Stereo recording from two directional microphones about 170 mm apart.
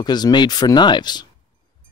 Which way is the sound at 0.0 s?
25° left (ahead or behind).